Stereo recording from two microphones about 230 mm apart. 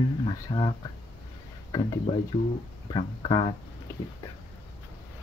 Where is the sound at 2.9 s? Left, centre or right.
Centre.